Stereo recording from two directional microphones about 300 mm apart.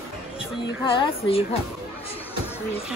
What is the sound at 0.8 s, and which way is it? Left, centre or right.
Speech, centre.